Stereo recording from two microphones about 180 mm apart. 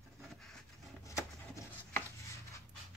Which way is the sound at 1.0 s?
15° left (ahead or behind).